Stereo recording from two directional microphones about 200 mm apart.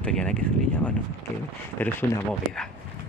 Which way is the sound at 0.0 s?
5° left (ahead or behind).